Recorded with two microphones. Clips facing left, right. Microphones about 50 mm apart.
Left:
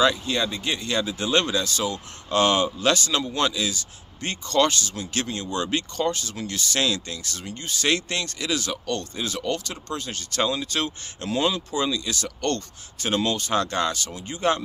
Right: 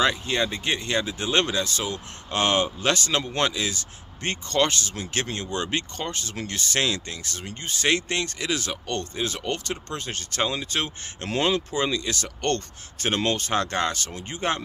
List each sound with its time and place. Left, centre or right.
0.0 s speech: right
11.2 s speech: right